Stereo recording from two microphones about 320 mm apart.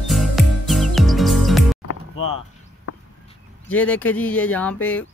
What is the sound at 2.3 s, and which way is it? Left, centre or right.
Chop, left.